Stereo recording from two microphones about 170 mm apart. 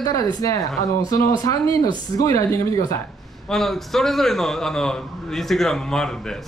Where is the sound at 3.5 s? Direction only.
Centre (ahead or behind).